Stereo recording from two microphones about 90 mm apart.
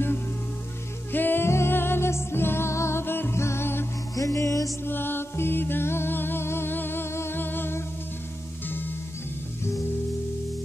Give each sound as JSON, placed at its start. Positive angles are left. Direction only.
{"t": 1.1, "sound": "music", "side_deg": 20}
{"t": 4.1, "sound": "music", "side_deg": 40}
{"t": 4.8, "sound": "music", "side_deg": 25}